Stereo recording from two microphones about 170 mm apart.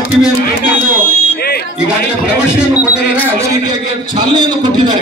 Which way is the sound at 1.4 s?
70° left (ahead or behind).